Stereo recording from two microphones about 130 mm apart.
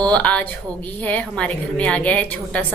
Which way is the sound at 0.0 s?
10° left (ahead or behind).